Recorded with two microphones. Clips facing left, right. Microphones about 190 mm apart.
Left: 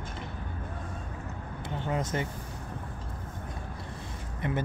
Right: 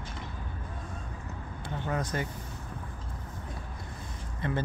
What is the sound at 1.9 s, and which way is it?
Speech, 20° left (ahead or behind).